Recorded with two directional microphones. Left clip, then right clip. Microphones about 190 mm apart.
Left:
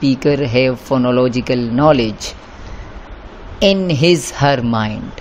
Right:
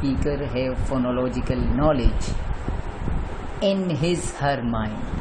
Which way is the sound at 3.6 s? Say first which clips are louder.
Left 10 dB; 45° left (ahead or behind).